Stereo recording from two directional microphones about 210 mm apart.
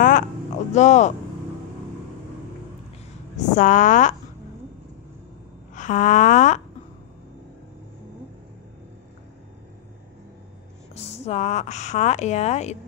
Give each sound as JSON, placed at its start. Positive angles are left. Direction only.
{"t": 0.7, "sound": "a woman's voice", "side_deg": 35}
{"t": 3.3, "sound": "a woman's voice", "side_deg": 35}
{"t": 5.8, "sound": "a woman's voice", "side_deg": 35}
{"t": 11.0, "sound": "a woman's voice", "side_deg": 30}